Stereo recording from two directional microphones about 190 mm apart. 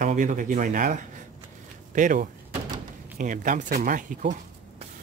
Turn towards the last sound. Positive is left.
turn(degrees=-45)  # may be behind; listen again after turning